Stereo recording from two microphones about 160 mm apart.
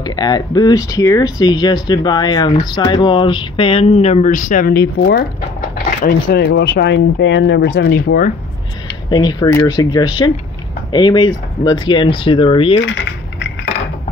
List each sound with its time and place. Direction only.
0.0 s speech: 25° left (ahead or behind); by 8.3 s 80° left
9.1 s speech: 25° left (ahead or behind)